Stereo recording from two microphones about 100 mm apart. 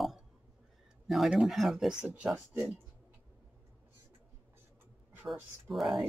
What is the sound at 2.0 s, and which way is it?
Speech, 15° right (ahead or behind).